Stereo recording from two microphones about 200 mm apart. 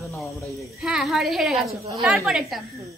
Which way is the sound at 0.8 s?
Centre (ahead or behind).